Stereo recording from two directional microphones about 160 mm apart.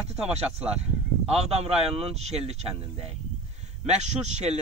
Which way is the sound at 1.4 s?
40° right (ahead or behind).